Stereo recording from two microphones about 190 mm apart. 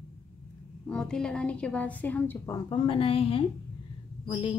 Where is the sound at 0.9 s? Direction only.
5° left (ahead or behind).